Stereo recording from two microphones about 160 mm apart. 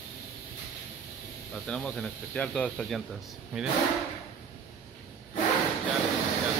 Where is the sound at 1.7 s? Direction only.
5° left (ahead or behind).